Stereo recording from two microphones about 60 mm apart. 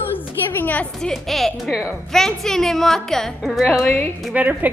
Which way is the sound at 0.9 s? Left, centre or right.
Centre.